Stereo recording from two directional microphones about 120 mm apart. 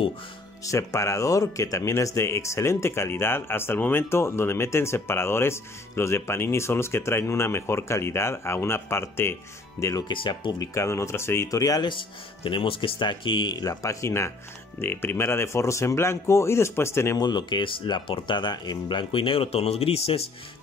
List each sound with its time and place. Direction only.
0.7 s speech: 25° left (ahead or behind)
10.0 s speech: 40° left (ahead or behind)
10.6 s speech: 25° left (ahead or behind)
12.0 s speech: 45° left (ahead or behind); by 17.2 s 20° left (ahead or behind)
17.2 s speech: 35° left (ahead or behind); by 20.2 s 55° left (ahead or behind)